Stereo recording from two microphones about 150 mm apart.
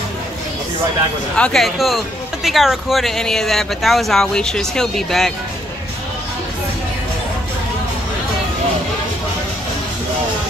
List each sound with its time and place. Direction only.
1.3 s speech: 5° left (ahead or behind)